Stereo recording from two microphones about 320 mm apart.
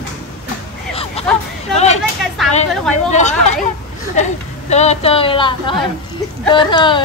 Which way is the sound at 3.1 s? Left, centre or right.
Left.